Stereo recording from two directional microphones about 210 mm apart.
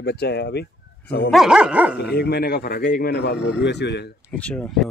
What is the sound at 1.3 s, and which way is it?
Dog, 5° right (ahead or behind).